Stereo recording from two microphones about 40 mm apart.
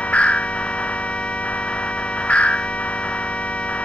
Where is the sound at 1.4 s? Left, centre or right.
Left.